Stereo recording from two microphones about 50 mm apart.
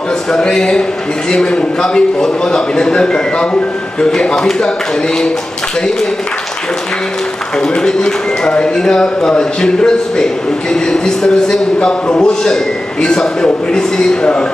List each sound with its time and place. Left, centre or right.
0.3 s a man's voice: centre
7.6 s a man's voice: centre